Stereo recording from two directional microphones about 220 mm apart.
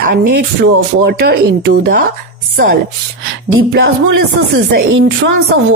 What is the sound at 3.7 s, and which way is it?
Music, 55° right (ahead or behind).